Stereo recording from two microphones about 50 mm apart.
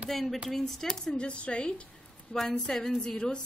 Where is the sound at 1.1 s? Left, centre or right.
Left.